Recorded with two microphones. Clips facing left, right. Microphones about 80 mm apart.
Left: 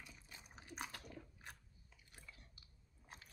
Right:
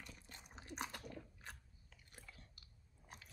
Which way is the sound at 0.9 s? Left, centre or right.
Centre.